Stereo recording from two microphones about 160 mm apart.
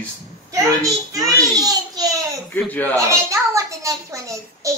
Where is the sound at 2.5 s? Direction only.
10° left (ahead or behind).